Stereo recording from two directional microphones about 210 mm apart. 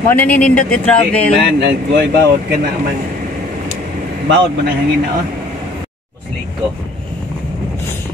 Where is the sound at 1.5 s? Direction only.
55° right (ahead or behind).